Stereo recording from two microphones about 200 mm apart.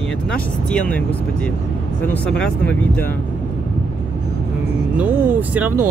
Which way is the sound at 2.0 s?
10° left (ahead or behind).